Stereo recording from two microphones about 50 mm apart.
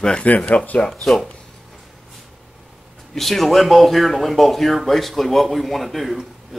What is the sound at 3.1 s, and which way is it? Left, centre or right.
Speech, centre.